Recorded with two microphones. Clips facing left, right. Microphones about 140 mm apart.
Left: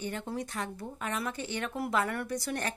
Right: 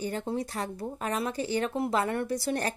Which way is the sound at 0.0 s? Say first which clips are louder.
Right 4 dB; 35° right (ahead or behind).